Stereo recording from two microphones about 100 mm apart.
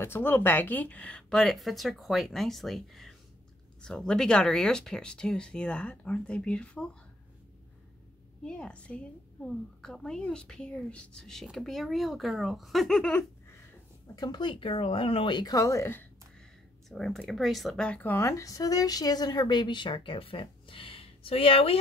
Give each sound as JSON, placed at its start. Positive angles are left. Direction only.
{"t": 0.0, "sound": "speech", "side_deg": 20}
{"t": 8.5, "sound": "speech", "side_deg": 10}
{"t": 14.1, "sound": "speech", "side_deg": 45}
{"t": 15.3, "sound": "speech", "side_deg": 40}
{"t": 16.9, "sound": "speech", "side_deg": 5}
{"t": 17.8, "sound": "speech", "side_deg": 10}
{"t": 18.1, "sound": "speech", "side_deg": 30}